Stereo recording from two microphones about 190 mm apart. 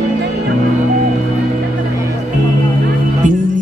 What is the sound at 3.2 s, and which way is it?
Music, 40° right (ahead or behind).